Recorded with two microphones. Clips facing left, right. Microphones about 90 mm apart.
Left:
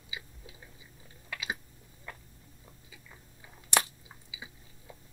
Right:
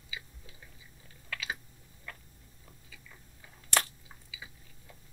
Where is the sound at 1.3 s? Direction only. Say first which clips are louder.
Left 1 dB; 15° left (ahead or behind).